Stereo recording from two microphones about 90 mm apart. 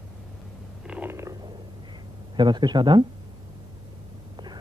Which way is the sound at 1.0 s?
30° right (ahead or behind).